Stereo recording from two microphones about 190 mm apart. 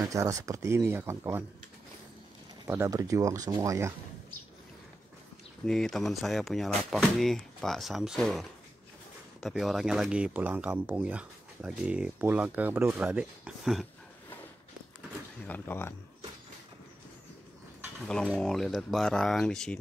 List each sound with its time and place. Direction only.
0.1 s speech: 15° right (ahead or behind)
2.6 s speech: 15° right (ahead or behind)
5.7 s speech: centre (ahead or behind)
15.4 s speech: 10° left (ahead or behind)
18.0 s speech: 5° left (ahead or behind)